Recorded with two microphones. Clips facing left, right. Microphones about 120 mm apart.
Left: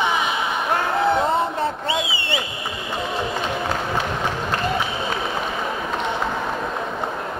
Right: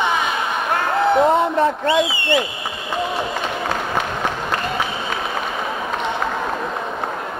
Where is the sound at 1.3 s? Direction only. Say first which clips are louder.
Right 5 dB; 85° right.